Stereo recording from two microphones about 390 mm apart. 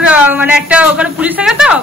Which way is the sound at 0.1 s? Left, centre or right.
Centre.